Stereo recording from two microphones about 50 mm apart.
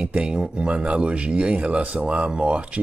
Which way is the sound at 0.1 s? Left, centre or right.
Right.